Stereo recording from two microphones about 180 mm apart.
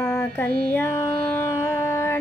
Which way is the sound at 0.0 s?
15° left (ahead or behind).